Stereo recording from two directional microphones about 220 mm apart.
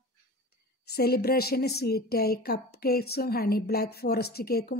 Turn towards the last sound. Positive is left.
turn(degrees=45)  # may be behind; listen again after turning